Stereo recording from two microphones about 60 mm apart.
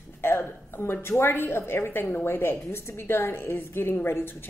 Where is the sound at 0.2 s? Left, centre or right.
Left.